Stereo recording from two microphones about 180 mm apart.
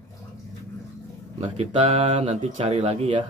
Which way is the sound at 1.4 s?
35° right (ahead or behind).